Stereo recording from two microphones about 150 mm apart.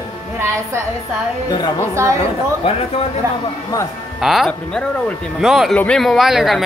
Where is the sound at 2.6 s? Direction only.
40° left (ahead or behind).